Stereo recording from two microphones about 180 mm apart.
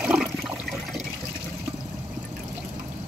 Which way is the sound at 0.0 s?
5° right (ahead or behind).